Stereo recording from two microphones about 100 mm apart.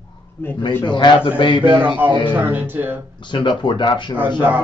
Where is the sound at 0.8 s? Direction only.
50° left (ahead or behind).